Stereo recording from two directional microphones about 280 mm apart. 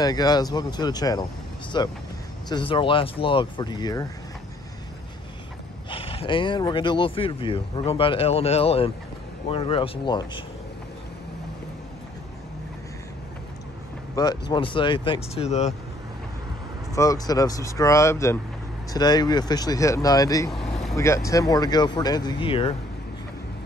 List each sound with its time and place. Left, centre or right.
0.0 s speech: centre
5.9 s speech: centre
14.1 s speech: centre
16.9 s speech: centre
20.5 s vehicle: centre
20.9 s speech: centre